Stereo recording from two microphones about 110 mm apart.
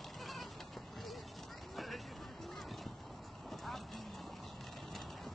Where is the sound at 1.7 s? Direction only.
Centre (ahead or behind).